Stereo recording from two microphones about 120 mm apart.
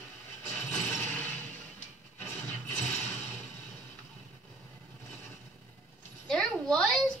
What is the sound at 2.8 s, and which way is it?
Mechanisms, 10° left (ahead or behind).